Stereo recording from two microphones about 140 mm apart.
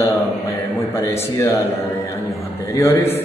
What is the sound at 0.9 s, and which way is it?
Speech, 20° left (ahead or behind).